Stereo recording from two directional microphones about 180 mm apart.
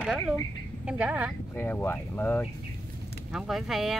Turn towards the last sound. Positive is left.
turn(degrees=0)  # may be behind; listen again after turning